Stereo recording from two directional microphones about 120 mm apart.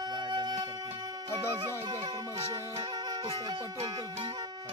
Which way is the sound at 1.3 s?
35° right (ahead or behind).